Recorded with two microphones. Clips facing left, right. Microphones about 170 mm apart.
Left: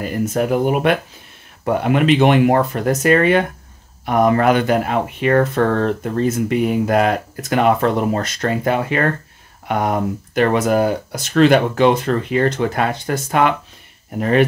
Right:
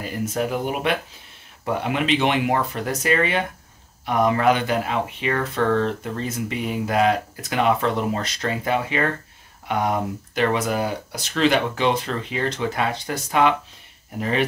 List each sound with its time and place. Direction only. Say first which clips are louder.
0.0 s speech: left 6 dB; 50° left (ahead or behind)